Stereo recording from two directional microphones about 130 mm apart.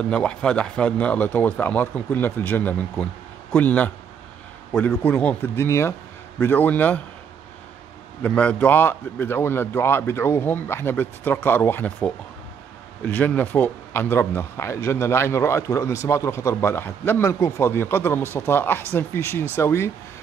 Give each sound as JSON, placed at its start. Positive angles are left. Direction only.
{"t": 0.1, "sound": "a man's voice", "side_deg": 10}
{"t": 8.2, "sound": "a man's voice", "side_deg": 10}